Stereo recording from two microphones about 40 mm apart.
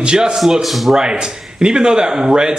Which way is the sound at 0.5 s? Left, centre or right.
Centre.